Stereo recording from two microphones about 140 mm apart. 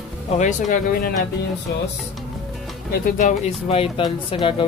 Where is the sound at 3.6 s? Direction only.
45° left (ahead or behind).